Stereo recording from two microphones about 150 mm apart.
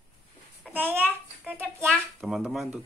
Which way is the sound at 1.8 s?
Centre (ahead or behind).